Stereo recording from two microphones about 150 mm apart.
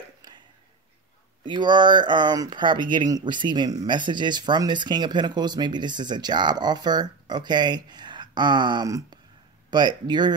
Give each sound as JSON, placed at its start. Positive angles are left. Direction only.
{"t": 1.4, "sound": "speech", "side_deg": -30}